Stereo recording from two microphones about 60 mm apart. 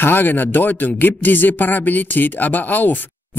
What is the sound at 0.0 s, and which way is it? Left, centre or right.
Speech, left.